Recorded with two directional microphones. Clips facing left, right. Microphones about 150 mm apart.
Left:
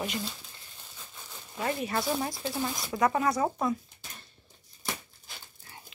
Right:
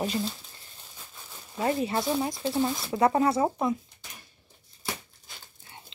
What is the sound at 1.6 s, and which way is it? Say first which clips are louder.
Speech: right 4 dB; 25° right (ahead or behind).